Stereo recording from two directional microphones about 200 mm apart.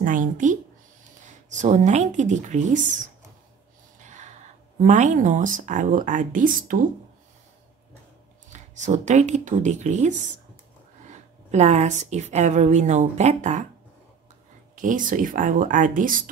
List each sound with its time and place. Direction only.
0.0 s speech: 40° right (ahead or behind)
4.0 s speech: 35° right (ahead or behind)
8.5 s speech: 35° right (ahead or behind)
14.8 s speech: 40° right (ahead or behind)